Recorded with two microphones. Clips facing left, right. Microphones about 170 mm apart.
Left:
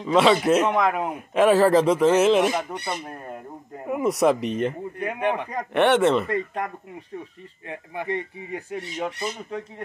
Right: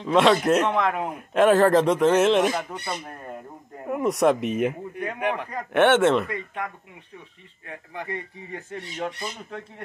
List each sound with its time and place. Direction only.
0.0 s speech: centre (ahead or behind)
6.2 s speech: 35° left (ahead or behind)
8.5 s speech: 10° left (ahead or behind)